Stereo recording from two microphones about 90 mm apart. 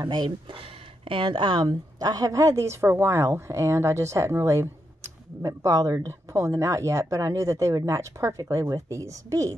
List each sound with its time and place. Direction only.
0.0 s speech: 55° right (ahead or behind)
0.6 s a woman's voice: 70° right (ahead or behind); by 9.5 s 35° right (ahead or behind)